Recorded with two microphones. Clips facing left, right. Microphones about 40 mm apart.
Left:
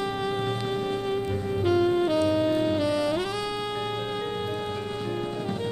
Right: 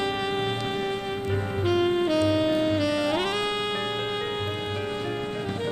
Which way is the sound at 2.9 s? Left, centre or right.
Right.